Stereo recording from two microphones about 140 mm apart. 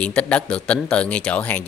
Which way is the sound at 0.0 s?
10° left (ahead or behind).